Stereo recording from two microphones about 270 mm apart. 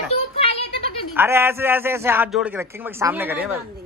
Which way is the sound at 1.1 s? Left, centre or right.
Centre.